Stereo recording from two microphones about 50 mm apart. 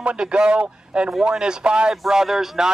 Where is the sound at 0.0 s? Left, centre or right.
Right.